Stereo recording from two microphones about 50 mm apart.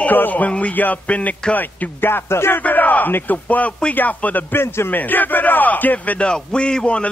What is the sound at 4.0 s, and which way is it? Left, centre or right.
Music, left.